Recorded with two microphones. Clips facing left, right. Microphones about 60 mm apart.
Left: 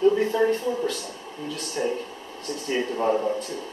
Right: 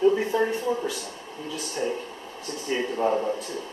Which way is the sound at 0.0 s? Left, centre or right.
Centre.